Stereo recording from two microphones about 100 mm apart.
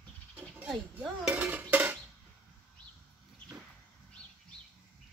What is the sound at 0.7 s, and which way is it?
Dishes, centre (ahead or behind).